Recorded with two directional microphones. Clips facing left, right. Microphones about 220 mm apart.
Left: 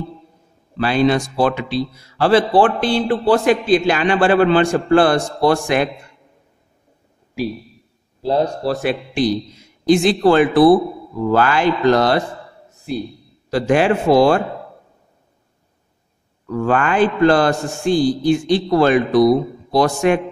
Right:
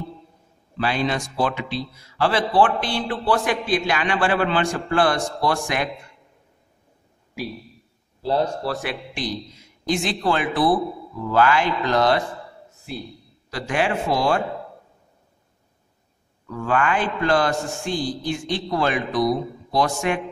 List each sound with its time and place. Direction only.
0.8 s a man's voice: 35° left (ahead or behind)
8.2 s a man's voice: 15° left (ahead or behind)
8.6 s a man's voice: 25° left (ahead or behind)
13.5 s a man's voice: 35° left (ahead or behind)
16.5 s a man's voice: 40° left (ahead or behind)